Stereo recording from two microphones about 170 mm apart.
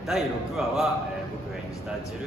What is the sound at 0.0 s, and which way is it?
Speech, centre (ahead or behind).